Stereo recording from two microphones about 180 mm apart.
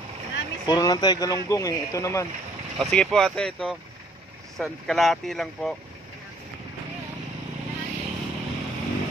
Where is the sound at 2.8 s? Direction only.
Centre (ahead or behind).